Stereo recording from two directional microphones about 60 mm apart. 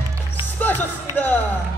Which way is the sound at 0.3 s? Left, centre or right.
Left.